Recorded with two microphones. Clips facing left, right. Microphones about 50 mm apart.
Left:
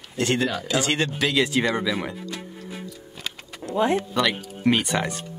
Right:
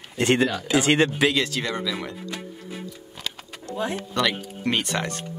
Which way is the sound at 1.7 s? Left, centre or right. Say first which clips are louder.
Left 3 dB; centre.